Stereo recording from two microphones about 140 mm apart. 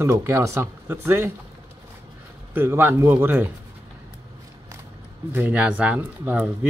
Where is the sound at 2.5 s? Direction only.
15° right (ahead or behind).